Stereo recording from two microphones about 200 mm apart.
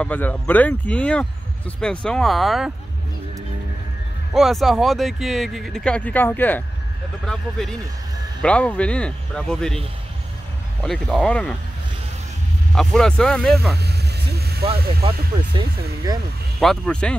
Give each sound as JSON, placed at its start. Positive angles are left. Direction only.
{"t": 0.0, "sound": "speech", "side_deg": 10}
{"t": 4.3, "sound": "speech", "side_deg": 0}
{"t": 12.7, "sound": "speech", "side_deg": 0}
{"t": 13.7, "sound": "vehicle", "side_deg": -55}
{"t": 14.8, "sound": "speech", "side_deg": -50}
{"t": 16.5, "sound": "speech", "side_deg": 5}